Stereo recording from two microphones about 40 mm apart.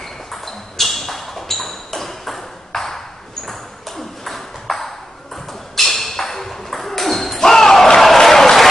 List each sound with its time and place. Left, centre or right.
0.0 s ping: centre
4.2 s ping: centre